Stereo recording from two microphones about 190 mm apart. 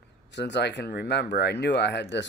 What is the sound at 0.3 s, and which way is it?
Speech, 65° left (ahead or behind).